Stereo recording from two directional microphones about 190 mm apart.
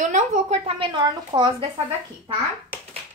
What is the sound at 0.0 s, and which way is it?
A woman's voice, 40° right (ahead or behind).